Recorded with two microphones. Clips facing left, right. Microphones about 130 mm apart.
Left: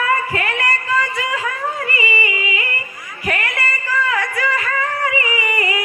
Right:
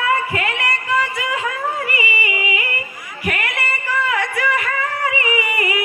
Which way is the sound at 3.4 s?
25° right (ahead or behind).